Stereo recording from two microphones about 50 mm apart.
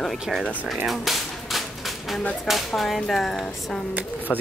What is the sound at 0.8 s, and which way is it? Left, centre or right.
Cap gun, centre.